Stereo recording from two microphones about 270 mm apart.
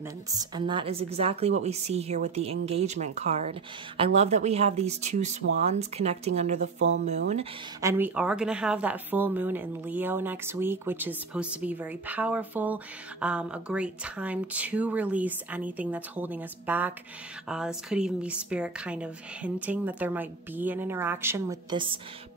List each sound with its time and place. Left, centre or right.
0.3 s a woman's voice: centre
7.8 s speech: centre